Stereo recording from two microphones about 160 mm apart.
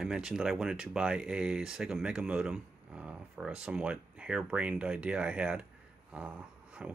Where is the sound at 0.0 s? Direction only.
5° right (ahead or behind).